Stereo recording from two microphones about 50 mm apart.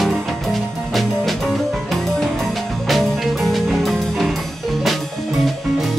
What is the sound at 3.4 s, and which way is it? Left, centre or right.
Music, centre.